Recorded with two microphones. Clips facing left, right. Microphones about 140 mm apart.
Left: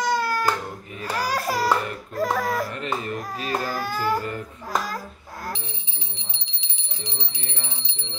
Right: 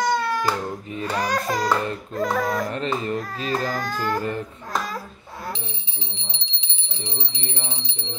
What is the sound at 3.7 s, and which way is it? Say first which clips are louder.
Speech: left 1 dB; 10° left (ahead or behind).